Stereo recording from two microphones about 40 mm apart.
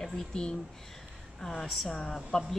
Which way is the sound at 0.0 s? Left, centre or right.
Centre.